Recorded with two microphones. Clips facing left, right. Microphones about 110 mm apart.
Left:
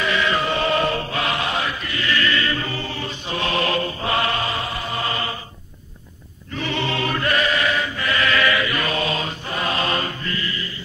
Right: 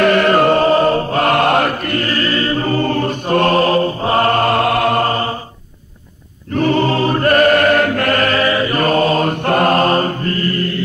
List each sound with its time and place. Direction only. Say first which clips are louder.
0.0 s chant: right 10 dB; 55° right (ahead or behind)
5.0 s a sound: right 8 dB; 40° right (ahead or behind)
6.5 s music: right 11 dB; 45° right (ahead or behind)